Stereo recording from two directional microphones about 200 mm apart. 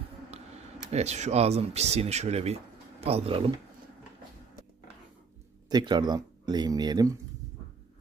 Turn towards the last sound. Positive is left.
turn(degrees=-20)  # may be behind; listen again after turning